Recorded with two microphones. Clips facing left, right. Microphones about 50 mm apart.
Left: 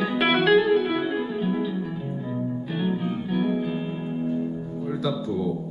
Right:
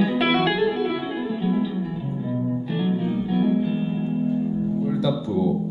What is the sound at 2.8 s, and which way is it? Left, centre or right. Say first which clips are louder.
Music: right 2 dB; centre.